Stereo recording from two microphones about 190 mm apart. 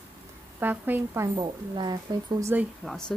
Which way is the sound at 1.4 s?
25° right (ahead or behind).